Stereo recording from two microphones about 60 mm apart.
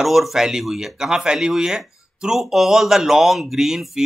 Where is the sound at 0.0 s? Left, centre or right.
Centre.